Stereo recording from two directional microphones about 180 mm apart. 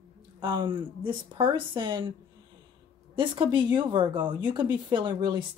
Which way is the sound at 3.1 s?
25° right (ahead or behind).